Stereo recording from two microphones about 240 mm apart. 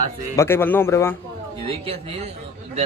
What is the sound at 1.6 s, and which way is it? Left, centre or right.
Speech, right.